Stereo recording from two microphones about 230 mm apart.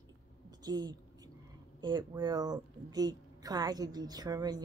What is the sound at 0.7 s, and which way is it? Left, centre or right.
Speech, centre.